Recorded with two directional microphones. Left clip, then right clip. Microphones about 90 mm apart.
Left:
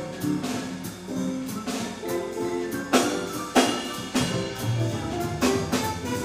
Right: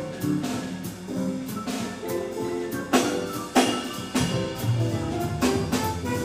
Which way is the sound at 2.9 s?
30° left (ahead or behind).